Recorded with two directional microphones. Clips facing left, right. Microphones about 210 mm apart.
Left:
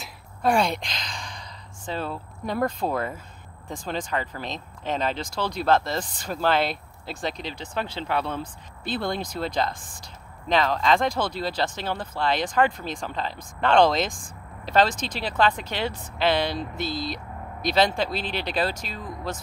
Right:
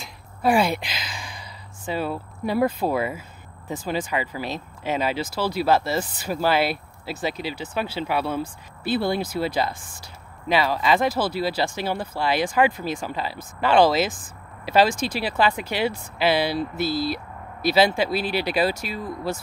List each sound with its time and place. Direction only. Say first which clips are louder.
0.0 s a woman's voice: right 2 dB; 5° right (ahead or behind)